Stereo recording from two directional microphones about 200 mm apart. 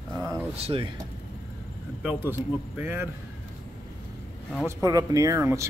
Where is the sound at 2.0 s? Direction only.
10° right (ahead or behind).